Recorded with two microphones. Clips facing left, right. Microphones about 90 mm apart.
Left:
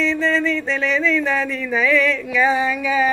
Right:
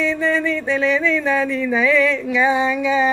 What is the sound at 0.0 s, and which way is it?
Speech, 15° right (ahead or behind).